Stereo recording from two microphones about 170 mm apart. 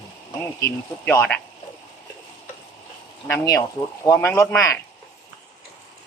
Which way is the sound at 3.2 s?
20° left (ahead or behind).